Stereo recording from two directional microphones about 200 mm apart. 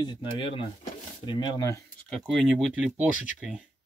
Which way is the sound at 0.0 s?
25° left (ahead or behind).